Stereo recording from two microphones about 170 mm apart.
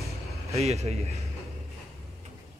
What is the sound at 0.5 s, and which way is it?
Speech, 40° right (ahead or behind).